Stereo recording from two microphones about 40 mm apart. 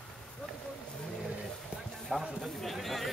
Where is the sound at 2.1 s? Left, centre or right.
Centre.